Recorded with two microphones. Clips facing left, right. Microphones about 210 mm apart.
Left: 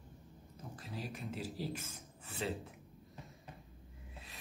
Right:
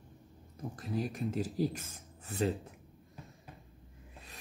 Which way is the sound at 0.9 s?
50° right (ahead or behind).